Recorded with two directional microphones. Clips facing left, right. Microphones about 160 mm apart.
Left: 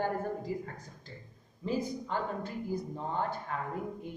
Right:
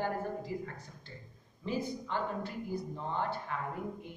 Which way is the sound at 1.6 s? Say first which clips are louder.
Left 2 dB; 40° left (ahead or behind).